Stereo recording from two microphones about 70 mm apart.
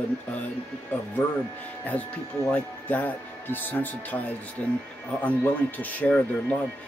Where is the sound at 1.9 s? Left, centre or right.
Left.